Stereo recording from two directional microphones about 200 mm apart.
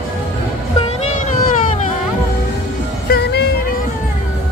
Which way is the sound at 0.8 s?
35° left (ahead or behind).